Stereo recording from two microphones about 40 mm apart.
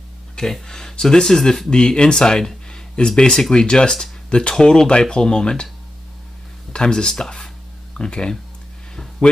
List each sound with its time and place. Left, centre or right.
0.4 s speech: centre
6.7 s speech: left